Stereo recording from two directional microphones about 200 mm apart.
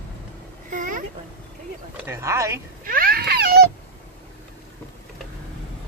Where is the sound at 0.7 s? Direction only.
40° right (ahead or behind).